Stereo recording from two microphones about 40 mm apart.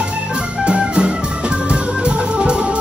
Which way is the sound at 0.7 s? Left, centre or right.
Right.